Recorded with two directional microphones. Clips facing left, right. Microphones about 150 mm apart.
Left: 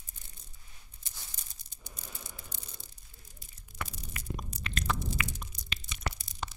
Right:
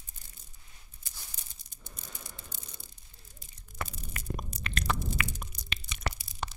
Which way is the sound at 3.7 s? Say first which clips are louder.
Right 2 dB; 50° right (ahead or behind).